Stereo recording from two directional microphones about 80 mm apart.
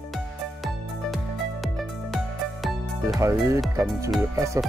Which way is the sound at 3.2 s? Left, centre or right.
Right.